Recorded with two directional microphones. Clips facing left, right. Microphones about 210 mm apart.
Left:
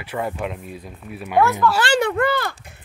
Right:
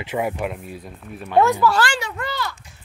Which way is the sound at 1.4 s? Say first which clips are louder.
Right 1 dB; 15° right (ahead or behind).